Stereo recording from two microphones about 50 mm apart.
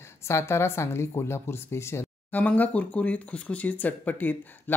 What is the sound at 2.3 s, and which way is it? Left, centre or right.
Speech, left.